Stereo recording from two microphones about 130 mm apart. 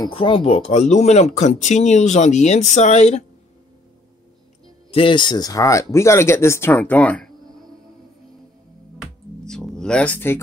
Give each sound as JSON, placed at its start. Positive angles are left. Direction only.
{"t": 0.1, "sound": "speech", "side_deg": 45}
{"t": 4.9, "sound": "speech", "side_deg": 40}
{"t": 9.0, "sound": "music", "side_deg": 5}